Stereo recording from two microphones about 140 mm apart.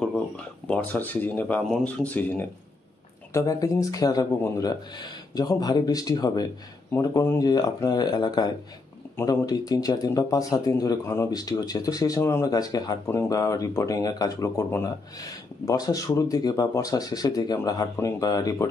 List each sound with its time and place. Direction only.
0.7 s speech: 10° left (ahead or behind)
3.3 s speech: 25° left (ahead or behind)